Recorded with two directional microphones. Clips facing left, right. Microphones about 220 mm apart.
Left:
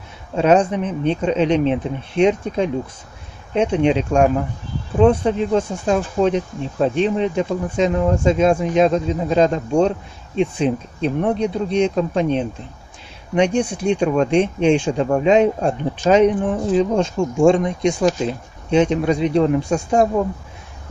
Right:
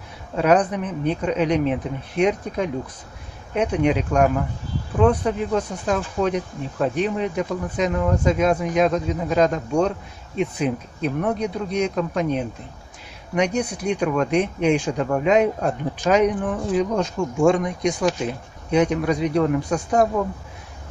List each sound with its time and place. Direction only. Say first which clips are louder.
0.4 s speech: left 3 dB; 25° left (ahead or behind)